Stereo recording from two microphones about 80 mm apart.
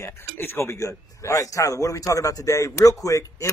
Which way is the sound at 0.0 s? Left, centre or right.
Left.